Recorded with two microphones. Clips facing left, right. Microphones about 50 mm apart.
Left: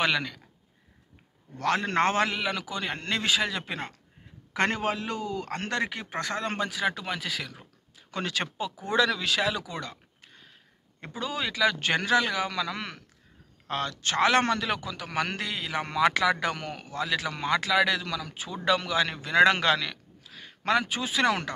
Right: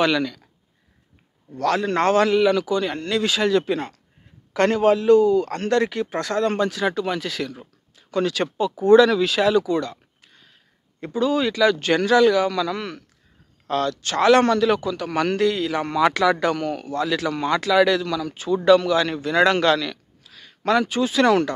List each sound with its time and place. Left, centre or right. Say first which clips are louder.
0.0 s a man's voice: right 6 dB; centre
1.6 s speech: right 5 dB; left
2.3 s a man's voice: right 13 dB; centre
3.0 s speech: right 7 dB; left
3.3 s a man's voice: right 9 dB; centre
8.1 s speech: right 9 dB; left
8.8 s speech: right 12 dB; centre
11.0 s a man's voice: right 11 dB; centre
11.8 s a man's voice: right 8 dB; left
14.7 s a man's voice: right 10 dB; centre